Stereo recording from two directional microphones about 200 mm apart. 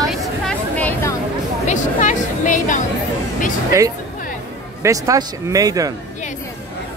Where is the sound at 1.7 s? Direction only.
40° left (ahead or behind).